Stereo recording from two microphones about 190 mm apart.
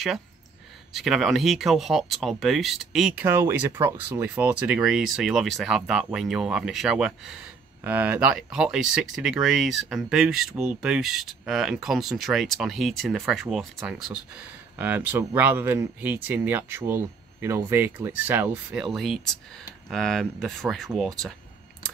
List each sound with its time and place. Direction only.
0.9 s speech: centre (ahead or behind)